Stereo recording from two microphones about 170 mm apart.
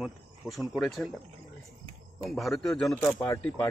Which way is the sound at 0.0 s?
Centre (ahead or behind).